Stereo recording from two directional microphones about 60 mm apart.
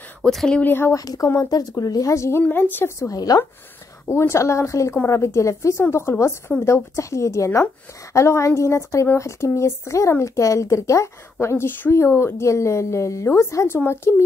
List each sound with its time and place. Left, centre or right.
0.2 s speech: centre
0.6 s speech: left
0.9 s a woman's voice: left
1.4 s speech: left
2.5 s speech: left
3.1 s a woman's voice: left
4.1 s a woman's voice: left
11.4 s a woman's voice: left
13.8 s a woman's voice: left